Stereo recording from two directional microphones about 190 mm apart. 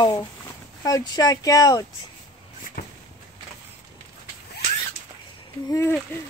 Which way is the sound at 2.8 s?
55° left (ahead or behind).